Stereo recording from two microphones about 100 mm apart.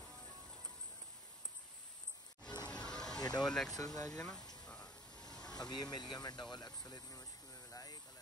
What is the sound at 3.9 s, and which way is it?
Speech, 40° left (ahead or behind).